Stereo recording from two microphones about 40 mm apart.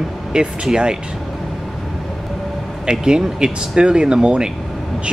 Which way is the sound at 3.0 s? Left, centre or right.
Centre.